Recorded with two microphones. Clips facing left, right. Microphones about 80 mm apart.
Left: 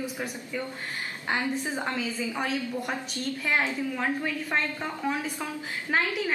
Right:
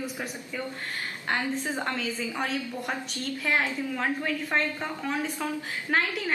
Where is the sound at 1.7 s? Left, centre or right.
Centre.